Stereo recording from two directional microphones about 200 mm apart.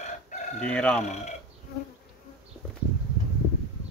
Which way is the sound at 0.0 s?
35° left (ahead or behind).